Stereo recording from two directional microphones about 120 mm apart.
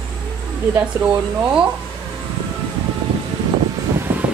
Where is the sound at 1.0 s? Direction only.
10° right (ahead or behind).